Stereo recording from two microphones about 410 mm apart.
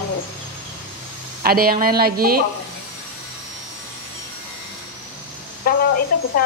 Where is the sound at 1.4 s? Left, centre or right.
Right.